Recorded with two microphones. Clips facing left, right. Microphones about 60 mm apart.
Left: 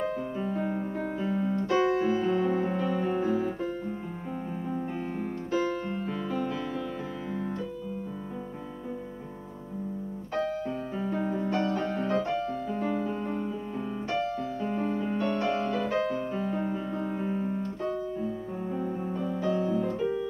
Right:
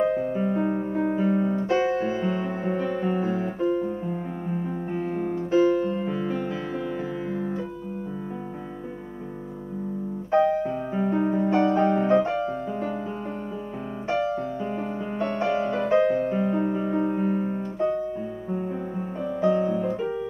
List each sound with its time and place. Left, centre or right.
0.0 s music: right
10.3 s piano: right
11.9 s music: right